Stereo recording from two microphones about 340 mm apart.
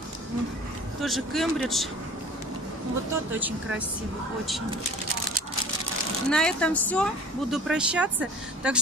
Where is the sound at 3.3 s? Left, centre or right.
Centre.